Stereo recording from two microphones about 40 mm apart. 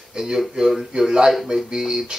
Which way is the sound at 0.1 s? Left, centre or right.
Centre.